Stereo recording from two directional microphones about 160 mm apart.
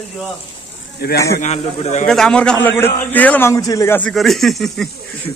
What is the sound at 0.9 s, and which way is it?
Speech, 80° left.